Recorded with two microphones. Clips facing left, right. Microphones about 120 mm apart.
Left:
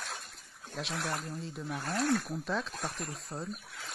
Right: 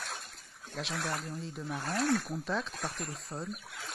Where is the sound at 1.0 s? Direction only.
Centre (ahead or behind).